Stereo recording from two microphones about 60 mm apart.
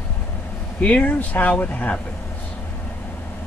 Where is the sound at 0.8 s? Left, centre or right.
Left.